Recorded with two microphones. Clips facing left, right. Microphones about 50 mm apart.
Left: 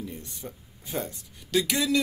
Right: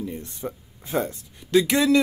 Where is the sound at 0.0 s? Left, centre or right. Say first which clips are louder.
Right 7 dB; centre.